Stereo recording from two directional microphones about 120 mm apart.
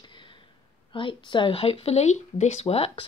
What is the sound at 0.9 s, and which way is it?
Speech, 45° left (ahead or behind).